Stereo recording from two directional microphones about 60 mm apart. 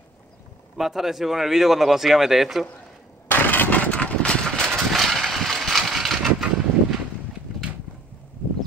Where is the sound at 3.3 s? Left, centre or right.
Left.